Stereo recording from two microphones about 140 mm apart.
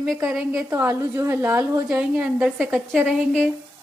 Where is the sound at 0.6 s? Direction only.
20° right (ahead or behind); by 3.5 s 5° left (ahead or behind).